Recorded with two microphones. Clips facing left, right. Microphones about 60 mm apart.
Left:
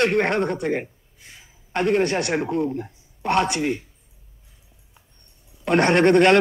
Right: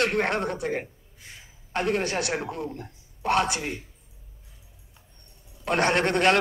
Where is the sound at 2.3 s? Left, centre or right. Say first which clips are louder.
Left 8 dB; left.